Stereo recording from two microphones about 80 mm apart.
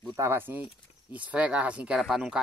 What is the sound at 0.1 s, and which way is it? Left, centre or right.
Speech, right.